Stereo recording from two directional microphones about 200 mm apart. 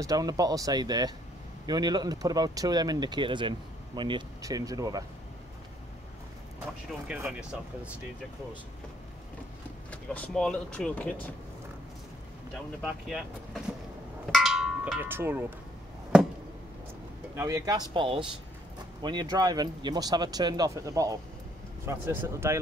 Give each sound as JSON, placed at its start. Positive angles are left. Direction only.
{"t": 0.0, "sound": "speech", "side_deg": -20}
{"t": 6.9, "sound": "speech", "side_deg": -10}
{"t": 9.8, "sound": "speech", "side_deg": 5}
{"t": 12.8, "sound": "speech", "side_deg": 0}
{"t": 14.3, "sound": "a sound", "side_deg": 0}
{"t": 17.4, "sound": "speech", "side_deg": -15}